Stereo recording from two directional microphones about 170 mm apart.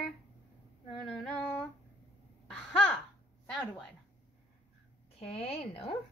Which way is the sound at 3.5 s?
Centre (ahead or behind).